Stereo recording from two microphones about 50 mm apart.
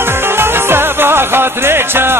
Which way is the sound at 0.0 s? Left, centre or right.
Right.